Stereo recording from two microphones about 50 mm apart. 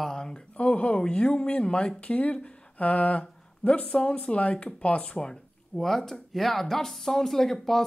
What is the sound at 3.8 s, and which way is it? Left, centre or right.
Speech, centre.